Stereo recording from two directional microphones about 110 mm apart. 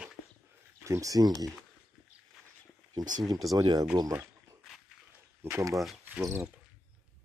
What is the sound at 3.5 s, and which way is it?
Speech, 35° right (ahead or behind).